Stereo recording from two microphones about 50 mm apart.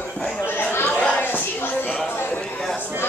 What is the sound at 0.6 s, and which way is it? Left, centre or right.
Chatter, left.